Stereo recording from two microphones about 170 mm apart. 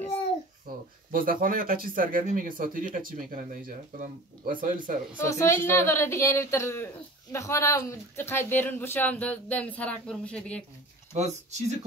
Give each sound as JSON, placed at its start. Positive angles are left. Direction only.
{"t": 0.7, "sound": "a sound", "side_deg": -60}
{"t": 1.1, "sound": "speech", "side_deg": -55}
{"t": 5.3, "sound": "speech", "side_deg": 15}
{"t": 11.1, "sound": "speech", "side_deg": -40}